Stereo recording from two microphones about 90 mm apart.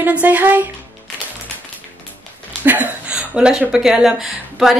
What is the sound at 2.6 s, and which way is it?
A woman's voice, 20° right (ahead or behind).